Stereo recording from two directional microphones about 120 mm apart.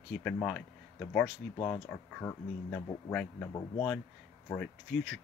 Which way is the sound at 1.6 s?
20° left (ahead or behind).